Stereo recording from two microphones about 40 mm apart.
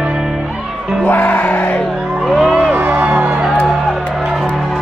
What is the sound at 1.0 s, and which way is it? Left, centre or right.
Music, left.